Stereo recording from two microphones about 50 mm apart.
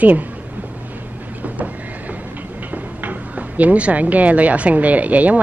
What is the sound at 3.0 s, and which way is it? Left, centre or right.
Speech, right.